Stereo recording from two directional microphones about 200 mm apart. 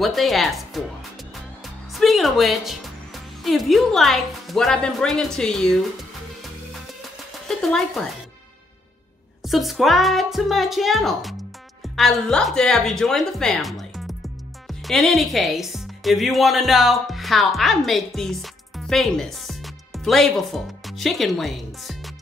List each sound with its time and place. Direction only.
0.0 s a woman's voice: centre (ahead or behind)
2.0 s a woman's voice: centre (ahead or behind)
7.4 s speech: centre (ahead or behind)
9.4 s a woman's voice: centre (ahead or behind)